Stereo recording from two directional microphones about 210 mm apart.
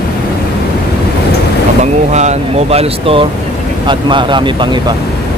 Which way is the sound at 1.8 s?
35° right (ahead or behind).